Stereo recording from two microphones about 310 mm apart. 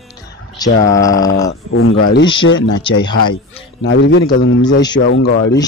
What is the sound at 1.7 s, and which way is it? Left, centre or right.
Speech, left.